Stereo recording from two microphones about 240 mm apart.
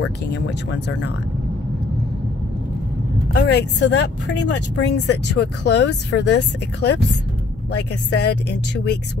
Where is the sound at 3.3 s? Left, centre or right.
Left.